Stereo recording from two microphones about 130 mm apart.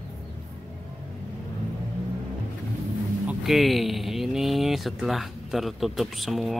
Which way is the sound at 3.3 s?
Centre (ahead or behind).